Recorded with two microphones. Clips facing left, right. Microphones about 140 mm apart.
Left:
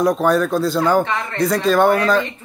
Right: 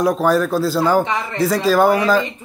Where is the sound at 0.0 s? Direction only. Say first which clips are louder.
Even; centre (ahead or behind).